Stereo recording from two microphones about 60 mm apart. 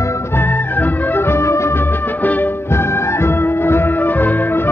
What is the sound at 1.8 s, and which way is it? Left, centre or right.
Music, left.